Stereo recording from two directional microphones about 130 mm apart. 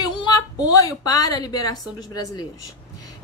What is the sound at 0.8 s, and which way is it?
Speech, 30° left (ahead or behind).